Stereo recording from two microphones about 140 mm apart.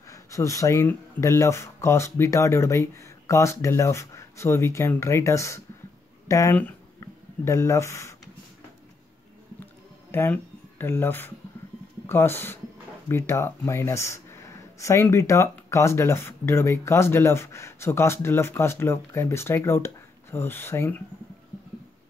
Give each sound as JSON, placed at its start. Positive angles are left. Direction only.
{"t": 0.1, "sound": "speech", "side_deg": 20}
{"t": 7.0, "sound": "a sound", "side_deg": 20}
{"t": 10.1, "sound": "speech", "side_deg": 15}